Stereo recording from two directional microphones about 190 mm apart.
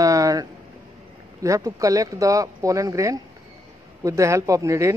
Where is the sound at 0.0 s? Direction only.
20° right (ahead or behind).